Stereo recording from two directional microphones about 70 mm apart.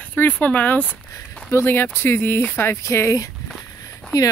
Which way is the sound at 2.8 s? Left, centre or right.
Left.